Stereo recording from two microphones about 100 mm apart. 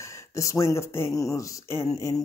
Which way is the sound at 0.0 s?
30° left (ahead or behind).